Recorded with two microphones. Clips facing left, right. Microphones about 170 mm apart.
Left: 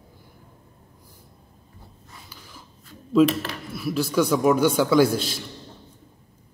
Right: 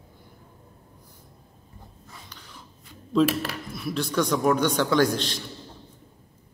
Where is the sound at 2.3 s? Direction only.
5° left (ahead or behind).